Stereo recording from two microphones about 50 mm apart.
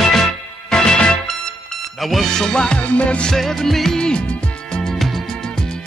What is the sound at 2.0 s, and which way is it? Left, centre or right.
Music, centre.